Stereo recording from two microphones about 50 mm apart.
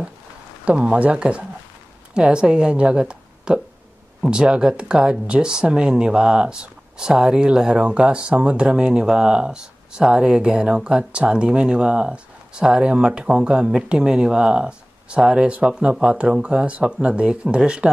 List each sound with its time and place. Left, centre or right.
0.7 s a woman's voice: right